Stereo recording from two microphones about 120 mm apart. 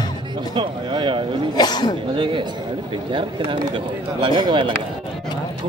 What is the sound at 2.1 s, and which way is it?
Speech, 45° right (ahead or behind).